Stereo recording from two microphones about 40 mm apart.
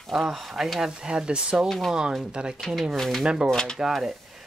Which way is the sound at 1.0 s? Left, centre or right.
Right.